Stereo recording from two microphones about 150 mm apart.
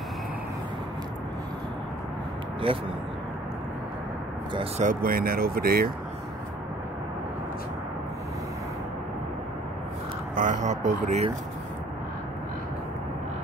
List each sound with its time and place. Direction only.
2.7 s speech: 35° right (ahead or behind)
4.7 s speech: 65° right (ahead or behind); by 5.9 s 85° right
10.3 s speech: 60° right (ahead or behind)